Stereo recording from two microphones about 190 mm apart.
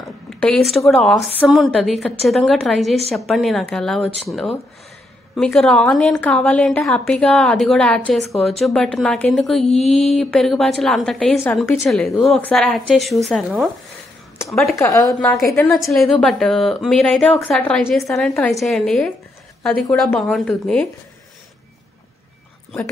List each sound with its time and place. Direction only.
0.0 s a woman's voice: 5° left (ahead or behind)
9.7 s a sound: 35° left (ahead or behind)
9.9 s a woman's voice: centre (ahead or behind)
14.8 s a woman's voice: 15° left (ahead or behind)
15.7 s a woman's voice: centre (ahead or behind)